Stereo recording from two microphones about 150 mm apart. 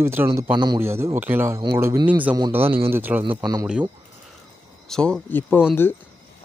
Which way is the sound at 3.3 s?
25° right (ahead or behind).